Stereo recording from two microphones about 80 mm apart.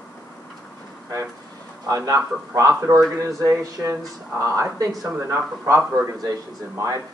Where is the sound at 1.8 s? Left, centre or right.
Right.